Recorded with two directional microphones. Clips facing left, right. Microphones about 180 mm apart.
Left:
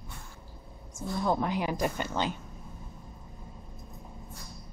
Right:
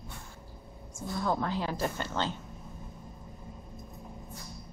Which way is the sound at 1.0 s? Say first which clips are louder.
Left 2 dB; 15° left (ahead or behind).